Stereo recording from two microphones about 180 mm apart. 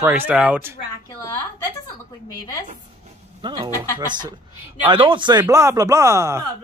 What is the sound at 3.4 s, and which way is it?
Speech, 25° right (ahead or behind).